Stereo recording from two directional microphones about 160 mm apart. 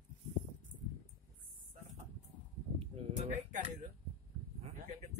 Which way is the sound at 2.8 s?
45° right (ahead or behind).